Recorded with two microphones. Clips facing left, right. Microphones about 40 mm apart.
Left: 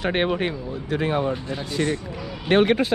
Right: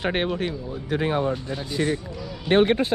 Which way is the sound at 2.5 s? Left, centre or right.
Left.